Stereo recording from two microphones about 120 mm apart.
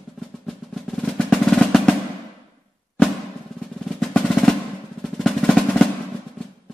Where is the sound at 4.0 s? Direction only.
5° left (ahead or behind).